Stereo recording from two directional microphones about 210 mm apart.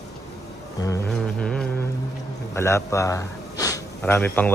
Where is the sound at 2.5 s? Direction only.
15° left (ahead or behind).